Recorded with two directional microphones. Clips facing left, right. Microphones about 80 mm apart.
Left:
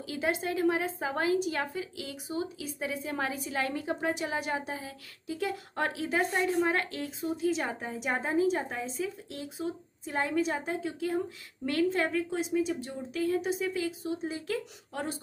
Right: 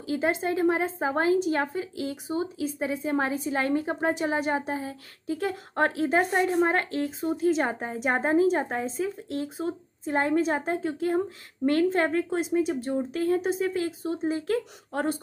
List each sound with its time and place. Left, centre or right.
0.0 s a woman's voice: right